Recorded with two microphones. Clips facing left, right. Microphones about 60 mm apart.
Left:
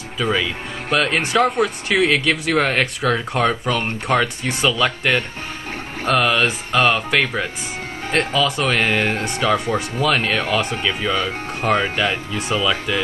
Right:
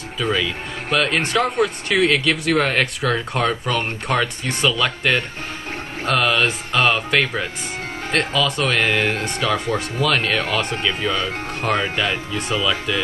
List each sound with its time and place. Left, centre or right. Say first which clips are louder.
0.2 s speech: left 1 dB; centre